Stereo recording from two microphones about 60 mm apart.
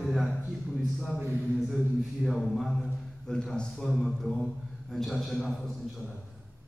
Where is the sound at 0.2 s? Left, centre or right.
Centre.